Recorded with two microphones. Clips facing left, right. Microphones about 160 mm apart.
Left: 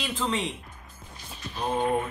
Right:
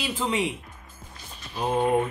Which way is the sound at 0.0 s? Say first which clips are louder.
Right 2 dB; 10° right (ahead or behind).